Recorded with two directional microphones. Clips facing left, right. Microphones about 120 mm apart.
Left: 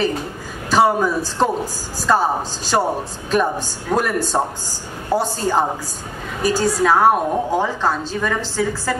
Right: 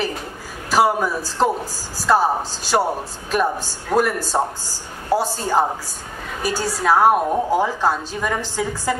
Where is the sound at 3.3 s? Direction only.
5° right (ahead or behind).